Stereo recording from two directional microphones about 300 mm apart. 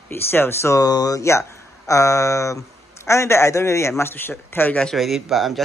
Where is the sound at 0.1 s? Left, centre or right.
Centre.